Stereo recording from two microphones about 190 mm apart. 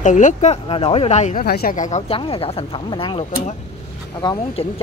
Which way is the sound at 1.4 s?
55° left (ahead or behind).